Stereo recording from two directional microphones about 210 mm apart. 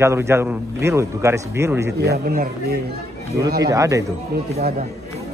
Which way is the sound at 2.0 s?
50° right (ahead or behind).